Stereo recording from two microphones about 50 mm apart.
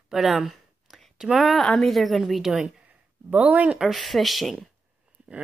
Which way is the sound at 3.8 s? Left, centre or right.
Centre.